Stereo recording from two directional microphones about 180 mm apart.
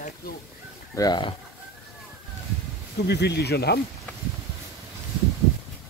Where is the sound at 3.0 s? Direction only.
65° left (ahead or behind).